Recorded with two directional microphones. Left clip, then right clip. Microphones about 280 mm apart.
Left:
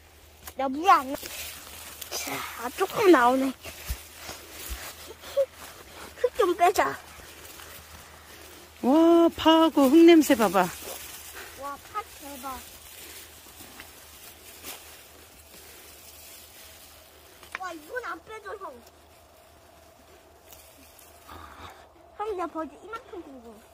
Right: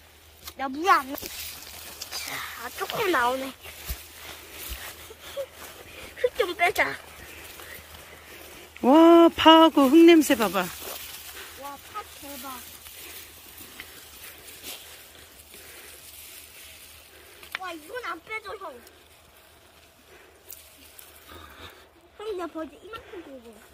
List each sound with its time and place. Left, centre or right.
0.6 s speech: left
6.1 s speech: left
8.8 s speech: centre
12.4 s a sound: centre
17.5 s speech: centre
21.3 s a sound: centre
22.2 s a woman's voice: centre